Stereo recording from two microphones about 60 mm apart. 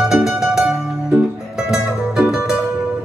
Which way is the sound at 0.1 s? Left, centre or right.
Centre.